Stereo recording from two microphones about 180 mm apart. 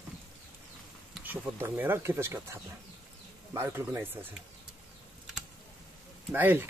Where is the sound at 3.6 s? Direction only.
10° right (ahead or behind).